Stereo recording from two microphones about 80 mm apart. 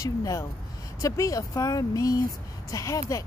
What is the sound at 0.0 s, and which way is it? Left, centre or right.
Speech, left.